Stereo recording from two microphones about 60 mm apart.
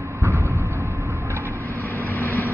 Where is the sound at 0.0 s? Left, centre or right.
Right.